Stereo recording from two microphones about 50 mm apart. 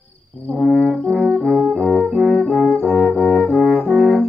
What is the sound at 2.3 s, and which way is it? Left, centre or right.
Brass instrument, centre.